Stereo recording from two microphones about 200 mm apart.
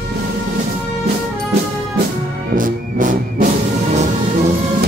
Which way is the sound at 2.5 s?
45° right (ahead or behind).